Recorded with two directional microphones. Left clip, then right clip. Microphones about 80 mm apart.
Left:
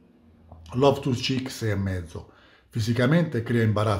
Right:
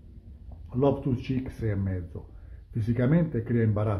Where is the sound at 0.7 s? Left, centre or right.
Centre.